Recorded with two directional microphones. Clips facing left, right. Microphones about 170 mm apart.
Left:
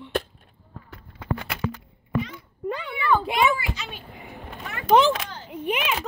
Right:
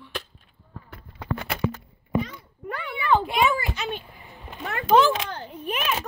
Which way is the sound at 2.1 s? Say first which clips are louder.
Right 1 dB; 20° right (ahead or behind).